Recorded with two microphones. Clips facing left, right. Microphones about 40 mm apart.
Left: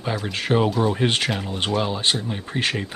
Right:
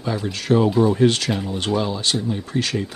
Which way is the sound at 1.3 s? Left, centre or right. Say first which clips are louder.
Right 2 dB; centre.